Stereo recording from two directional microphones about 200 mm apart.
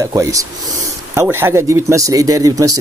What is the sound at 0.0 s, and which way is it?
A man's voice, 15° right (ahead or behind).